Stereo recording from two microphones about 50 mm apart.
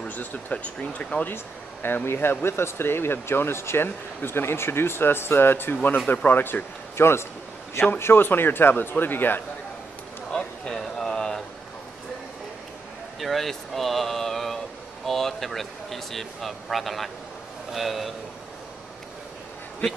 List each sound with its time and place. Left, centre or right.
0.1 s speech: left
1.3 s speech: left
5.8 s speech: left
10.3 s a sound: centre
13.2 s speech: centre